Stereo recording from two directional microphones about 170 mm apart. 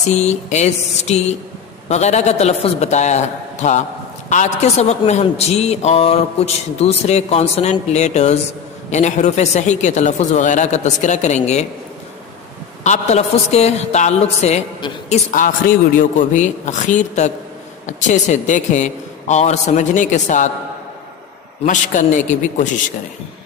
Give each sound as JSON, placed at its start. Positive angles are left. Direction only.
{"t": 0.1, "sound": "a man's voice", "side_deg": 40}
{"t": 12.8, "sound": "a man's voice", "side_deg": 45}
{"t": 15.0, "sound": "a man's voice", "side_deg": 50}
{"t": 21.6, "sound": "a man's voice", "side_deg": 50}